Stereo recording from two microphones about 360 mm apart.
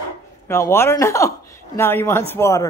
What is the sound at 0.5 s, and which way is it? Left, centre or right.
Speech, centre.